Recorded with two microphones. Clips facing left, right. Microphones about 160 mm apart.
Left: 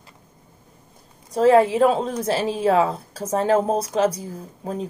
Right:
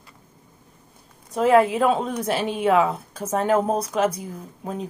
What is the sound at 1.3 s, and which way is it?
A woman's voice, 30° left (ahead or behind).